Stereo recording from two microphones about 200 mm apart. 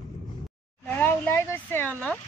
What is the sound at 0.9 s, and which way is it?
Speech, 10° left (ahead or behind).